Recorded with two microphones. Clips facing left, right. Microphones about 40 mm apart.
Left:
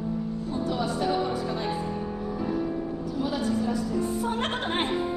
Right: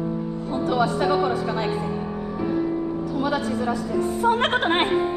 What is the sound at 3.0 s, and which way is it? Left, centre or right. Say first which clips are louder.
Speech: right 5 dB; right.